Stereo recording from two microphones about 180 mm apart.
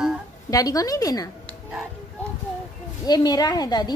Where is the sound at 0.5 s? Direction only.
20° left (ahead or behind).